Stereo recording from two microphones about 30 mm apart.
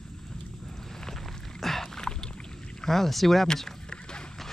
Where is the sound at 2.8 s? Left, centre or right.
Centre.